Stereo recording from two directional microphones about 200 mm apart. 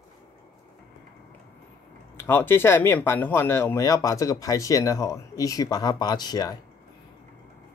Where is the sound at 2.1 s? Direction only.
10° left (ahead or behind).